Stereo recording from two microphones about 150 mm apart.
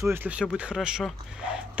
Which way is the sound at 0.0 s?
15° right (ahead or behind).